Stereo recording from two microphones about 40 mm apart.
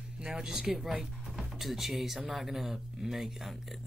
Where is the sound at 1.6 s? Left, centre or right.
Centre.